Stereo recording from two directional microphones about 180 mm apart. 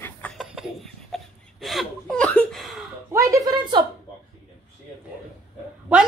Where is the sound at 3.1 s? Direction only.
15° right (ahead or behind).